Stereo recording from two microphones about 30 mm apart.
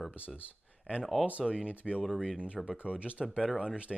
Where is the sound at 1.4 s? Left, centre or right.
Right.